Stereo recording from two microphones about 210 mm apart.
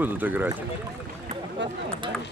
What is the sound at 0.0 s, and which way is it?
Speech, 10° right (ahead or behind).